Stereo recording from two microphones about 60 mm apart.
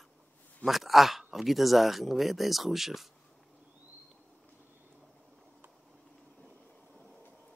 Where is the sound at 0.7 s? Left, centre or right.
Centre.